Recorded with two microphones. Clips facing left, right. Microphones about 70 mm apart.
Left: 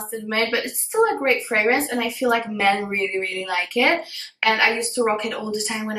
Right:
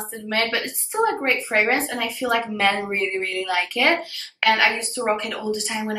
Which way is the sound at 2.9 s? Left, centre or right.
Centre.